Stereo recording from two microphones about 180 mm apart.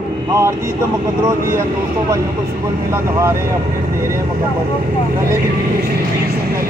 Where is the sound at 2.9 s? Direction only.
15° right (ahead or behind).